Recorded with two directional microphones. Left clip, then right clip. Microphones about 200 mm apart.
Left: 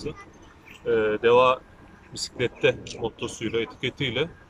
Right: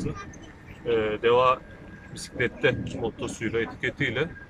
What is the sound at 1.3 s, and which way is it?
Speech, 10° left (ahead or behind).